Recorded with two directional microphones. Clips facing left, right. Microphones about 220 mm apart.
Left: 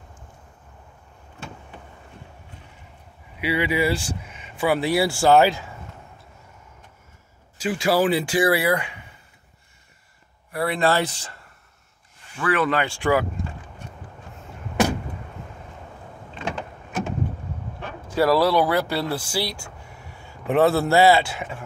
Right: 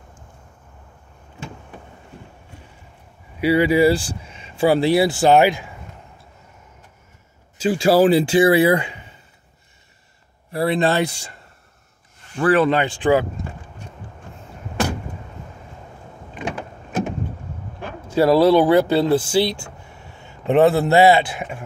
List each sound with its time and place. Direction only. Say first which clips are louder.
3.3 s speech: right 7 dB; 40° right (ahead or behind); by 5.7 s 15° right (ahead or behind)
7.5 s speech: right 6 dB; 30° right (ahead or behind)
10.5 s speech: right 3 dB; 25° right (ahead or behind)
12.4 s speech: right 6 dB; 35° right (ahead or behind)
16.3 s power windows: right 2 dB; 15° right (ahead or behind)
18.0 s a man's voice: right 5 dB; 25° right (ahead or behind)